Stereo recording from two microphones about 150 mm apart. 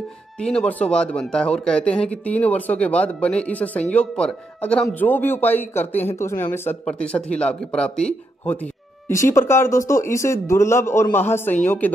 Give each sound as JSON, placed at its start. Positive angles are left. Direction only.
{"t": 0.4, "sound": "speech", "side_deg": 5}
{"t": 9.3, "sound": "speech", "side_deg": 15}